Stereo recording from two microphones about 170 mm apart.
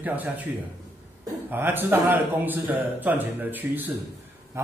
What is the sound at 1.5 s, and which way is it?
A man's voice, 10° right (ahead or behind).